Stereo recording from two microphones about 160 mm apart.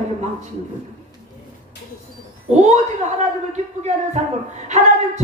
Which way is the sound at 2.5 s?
45° right (ahead or behind).